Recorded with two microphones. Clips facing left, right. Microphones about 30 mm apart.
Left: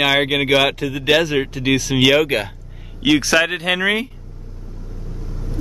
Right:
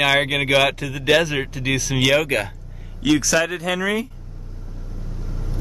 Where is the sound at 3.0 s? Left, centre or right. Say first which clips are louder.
Left 3 dB; left.